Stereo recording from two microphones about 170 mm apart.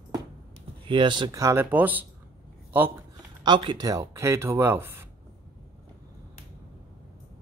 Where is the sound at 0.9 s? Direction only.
30° right (ahead or behind); by 2.0 s 10° right (ahead or behind).